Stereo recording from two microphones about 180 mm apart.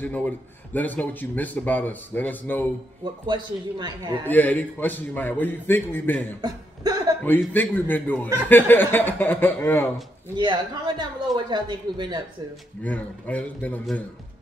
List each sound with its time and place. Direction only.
0.0 s a man's voice: 10° left (ahead or behind)
3.0 s speech: 25° right (ahead or behind)
4.2 s a man's voice: 10° left (ahead or behind)
6.4 s chuckle: 20° right (ahead or behind)
7.2 s a man's voice: 10° left (ahead or behind)
10.3 s speech: 25° right (ahead or behind)
12.8 s a man's voice: 10° left (ahead or behind)